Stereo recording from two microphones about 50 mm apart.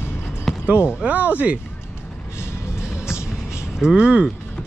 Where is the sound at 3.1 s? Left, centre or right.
Left.